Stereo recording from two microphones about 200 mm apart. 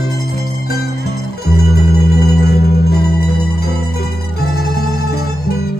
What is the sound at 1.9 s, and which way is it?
Singing bowl, 50° left (ahead or behind).